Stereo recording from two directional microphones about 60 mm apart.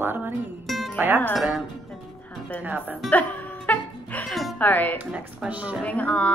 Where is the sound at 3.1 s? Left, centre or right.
Left.